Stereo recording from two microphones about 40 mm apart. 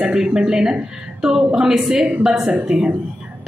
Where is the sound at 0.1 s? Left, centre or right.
Centre.